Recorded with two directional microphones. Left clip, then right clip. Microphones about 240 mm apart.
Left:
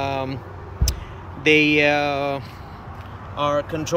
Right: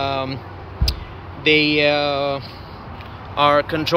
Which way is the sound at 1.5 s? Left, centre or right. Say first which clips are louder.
Right 1 dB; centre.